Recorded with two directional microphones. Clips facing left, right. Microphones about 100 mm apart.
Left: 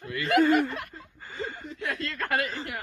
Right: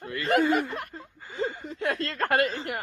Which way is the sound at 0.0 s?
35° right (ahead or behind).